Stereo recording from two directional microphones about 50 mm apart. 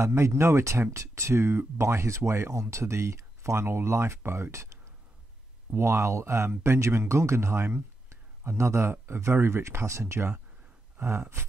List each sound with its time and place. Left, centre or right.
0.0 s speech: right
0.9 s speech: right
3.6 s speech: right
5.8 s speech: right
8.5 s speech: right
9.0 s speech: right
11.1 s speech: right